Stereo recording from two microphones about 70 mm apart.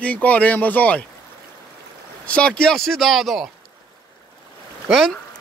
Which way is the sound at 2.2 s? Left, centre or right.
Centre.